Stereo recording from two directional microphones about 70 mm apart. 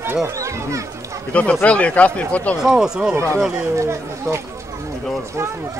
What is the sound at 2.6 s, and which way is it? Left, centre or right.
Speech, centre.